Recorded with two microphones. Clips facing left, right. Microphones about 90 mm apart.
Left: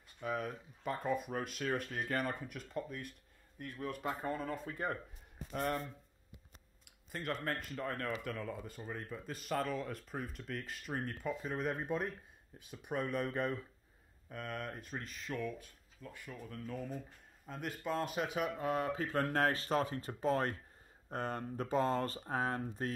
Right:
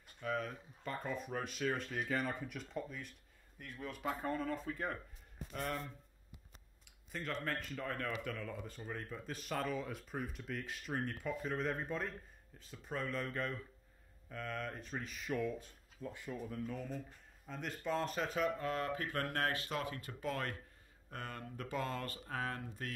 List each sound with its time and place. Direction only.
0.2 s speech: 10° left (ahead or behind)
4.2 s speech: 15° left (ahead or behind)
7.1 s speech: 5° left (ahead or behind); by 13.6 s 20° left (ahead or behind)
14.3 s speech: 10° left (ahead or behind)
15.3 s speech: 20° right (ahead or behind)
16.5 s speech: centre (ahead or behind); by 22.9 s 30° left (ahead or behind)